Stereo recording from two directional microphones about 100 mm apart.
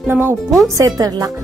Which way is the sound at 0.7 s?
40° right (ahead or behind).